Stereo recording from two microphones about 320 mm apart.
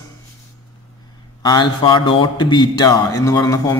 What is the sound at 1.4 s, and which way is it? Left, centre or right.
A man's voice, centre.